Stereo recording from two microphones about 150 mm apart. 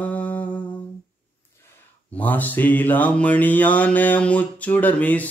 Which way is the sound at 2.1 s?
10° left (ahead or behind).